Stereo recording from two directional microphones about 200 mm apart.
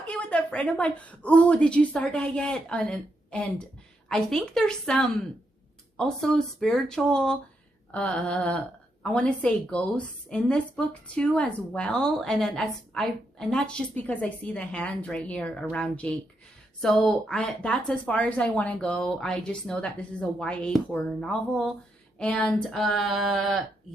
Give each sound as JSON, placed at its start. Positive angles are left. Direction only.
{"t": 0.0, "sound": "speech", "side_deg": 5}